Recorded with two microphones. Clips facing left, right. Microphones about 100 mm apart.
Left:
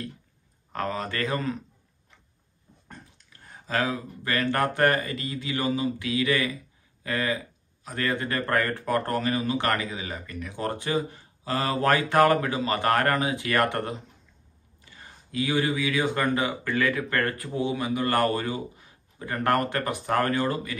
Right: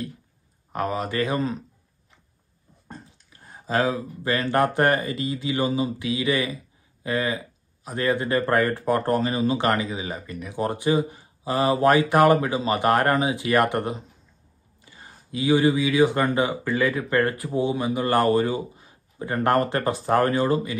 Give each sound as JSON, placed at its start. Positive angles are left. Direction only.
{"t": 0.7, "sound": "speech", "side_deg": -15}
{"t": 2.9, "sound": "speech", "side_deg": -20}